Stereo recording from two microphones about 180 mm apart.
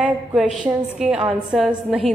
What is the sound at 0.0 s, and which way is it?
A woman's voice, centre (ahead or behind).